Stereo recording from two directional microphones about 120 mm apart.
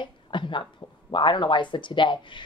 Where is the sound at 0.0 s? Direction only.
40° left (ahead or behind).